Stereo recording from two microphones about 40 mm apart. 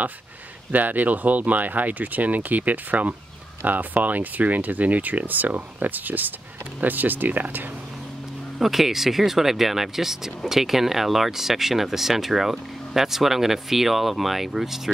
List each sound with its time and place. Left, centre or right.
0.7 s speech: right
8.5 s speech: centre